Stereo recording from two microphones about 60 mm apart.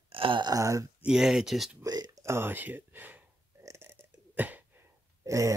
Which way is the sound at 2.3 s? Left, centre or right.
Right.